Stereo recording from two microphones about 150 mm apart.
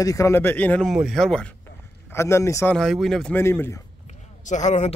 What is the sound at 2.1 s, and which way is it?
Speech, 15° left (ahead or behind).